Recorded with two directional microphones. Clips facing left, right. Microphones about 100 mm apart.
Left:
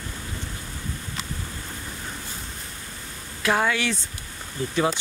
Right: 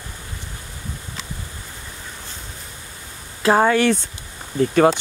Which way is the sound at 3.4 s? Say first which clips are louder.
Right 7 dB; 35° right (ahead or behind).